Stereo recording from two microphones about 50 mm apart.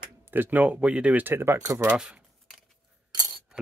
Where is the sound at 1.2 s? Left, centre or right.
Right.